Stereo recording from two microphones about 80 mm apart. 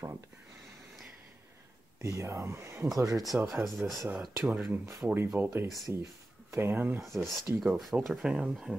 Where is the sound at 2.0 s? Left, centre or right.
Right.